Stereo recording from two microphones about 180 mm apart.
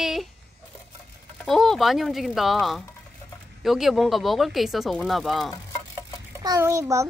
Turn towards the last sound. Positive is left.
turn(degrees=-15)  # may be behind; listen again after turning